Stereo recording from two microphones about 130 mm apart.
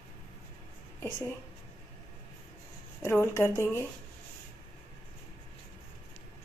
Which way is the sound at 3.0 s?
20° left (ahead or behind).